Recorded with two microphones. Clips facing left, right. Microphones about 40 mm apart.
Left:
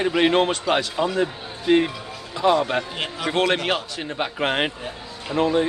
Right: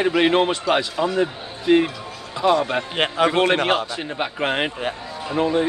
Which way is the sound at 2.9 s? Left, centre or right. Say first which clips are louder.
Right 9 dB; right.